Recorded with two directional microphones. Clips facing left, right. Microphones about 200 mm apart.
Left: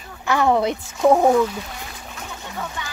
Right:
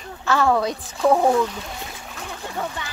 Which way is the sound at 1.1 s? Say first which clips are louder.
Left 2 dB; 15° left (ahead or behind).